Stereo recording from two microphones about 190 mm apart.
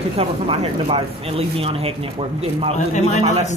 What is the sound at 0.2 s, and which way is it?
Speech, 30° right (ahead or behind).